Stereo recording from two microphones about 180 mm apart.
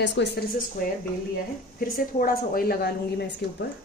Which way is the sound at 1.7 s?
55° left (ahead or behind).